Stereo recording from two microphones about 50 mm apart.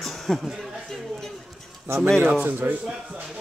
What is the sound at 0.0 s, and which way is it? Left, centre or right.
Chuckle, centre.